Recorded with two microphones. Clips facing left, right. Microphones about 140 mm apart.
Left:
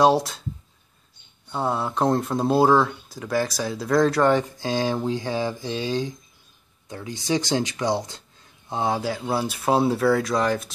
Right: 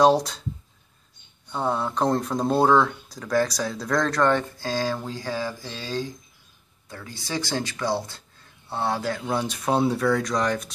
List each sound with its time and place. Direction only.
0.0 s speech: centre (ahead or behind)
1.5 s speech: 5° left (ahead or behind)